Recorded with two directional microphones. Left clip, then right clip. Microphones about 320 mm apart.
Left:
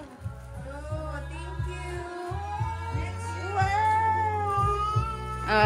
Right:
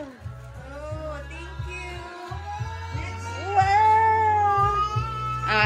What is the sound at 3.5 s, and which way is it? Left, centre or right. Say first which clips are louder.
Music: right 7 dB; right.